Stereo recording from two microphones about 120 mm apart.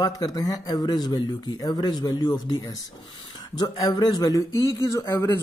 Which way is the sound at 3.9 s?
35° left (ahead or behind).